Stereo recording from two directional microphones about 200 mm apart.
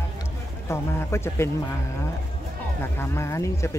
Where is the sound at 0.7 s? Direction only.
15° left (ahead or behind).